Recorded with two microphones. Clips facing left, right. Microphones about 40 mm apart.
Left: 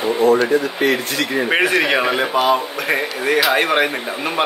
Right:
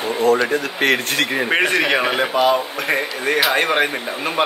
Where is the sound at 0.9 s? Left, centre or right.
Right.